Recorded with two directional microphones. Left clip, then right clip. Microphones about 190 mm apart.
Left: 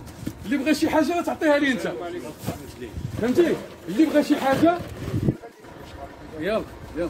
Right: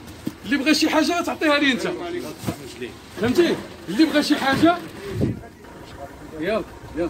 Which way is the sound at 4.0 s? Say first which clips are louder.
Right 1 dB; 50° left (ahead or behind).